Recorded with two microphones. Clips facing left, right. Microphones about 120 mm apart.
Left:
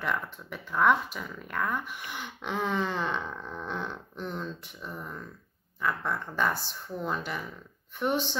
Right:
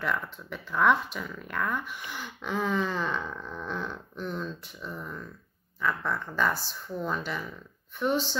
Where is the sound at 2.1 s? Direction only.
20° left (ahead or behind).